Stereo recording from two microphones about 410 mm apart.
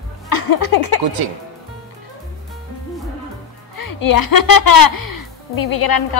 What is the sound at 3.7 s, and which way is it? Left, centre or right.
Speech, left.